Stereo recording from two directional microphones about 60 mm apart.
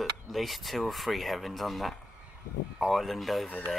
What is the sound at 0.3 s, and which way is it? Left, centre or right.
Speech, centre.